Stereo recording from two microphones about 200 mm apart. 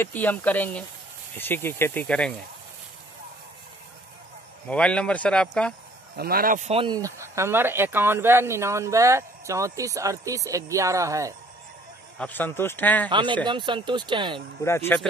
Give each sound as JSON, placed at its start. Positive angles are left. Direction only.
{"t": 0.0, "sound": "speech", "side_deg": 10}
{"t": 4.6, "sound": "speech", "side_deg": 5}
{"t": 6.1, "sound": "speech", "side_deg": -50}
{"t": 12.2, "sound": "speech", "side_deg": 10}
{"t": 13.1, "sound": "speech", "side_deg": -25}
{"t": 14.6, "sound": "speech", "side_deg": 15}